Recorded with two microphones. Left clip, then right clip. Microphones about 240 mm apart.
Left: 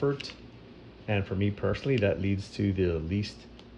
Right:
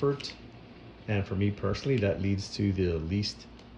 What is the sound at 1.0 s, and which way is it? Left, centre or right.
Speech, centre.